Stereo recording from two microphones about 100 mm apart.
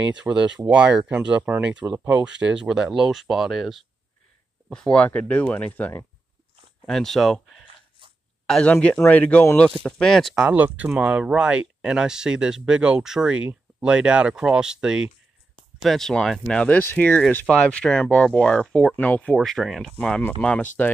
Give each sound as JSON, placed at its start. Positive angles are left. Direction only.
{"t": 0.2, "sound": "speech", "side_deg": -10}
{"t": 4.6, "sound": "speech", "side_deg": 10}
{"t": 6.9, "sound": "speech", "side_deg": 5}
{"t": 9.8, "sound": "speech", "side_deg": 5}
{"t": 10.4, "sound": "speech", "side_deg": -15}
{"t": 19.3, "sound": "speech", "side_deg": 0}